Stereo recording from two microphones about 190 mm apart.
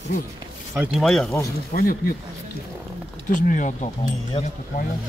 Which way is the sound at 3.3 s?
40° left (ahead or behind).